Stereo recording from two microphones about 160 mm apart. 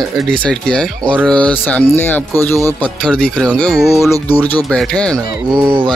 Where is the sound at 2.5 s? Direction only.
20° right (ahead or behind).